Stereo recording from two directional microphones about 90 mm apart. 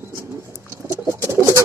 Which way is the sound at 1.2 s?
30° right (ahead or behind).